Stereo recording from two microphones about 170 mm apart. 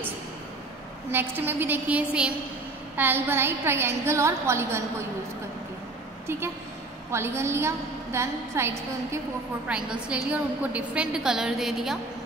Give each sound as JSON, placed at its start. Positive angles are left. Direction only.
{"t": 1.1, "sound": "a woman's voice", "side_deg": -10}
{"t": 7.1, "sound": "a woman's voice", "side_deg": -15}